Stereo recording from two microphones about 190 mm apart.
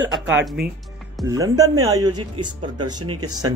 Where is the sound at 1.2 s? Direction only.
15° right (ahead or behind).